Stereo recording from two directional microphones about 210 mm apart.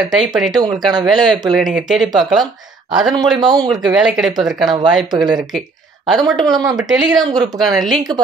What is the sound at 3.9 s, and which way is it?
Speech, centre (ahead or behind).